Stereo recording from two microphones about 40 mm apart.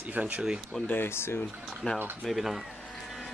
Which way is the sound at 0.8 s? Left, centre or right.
Left.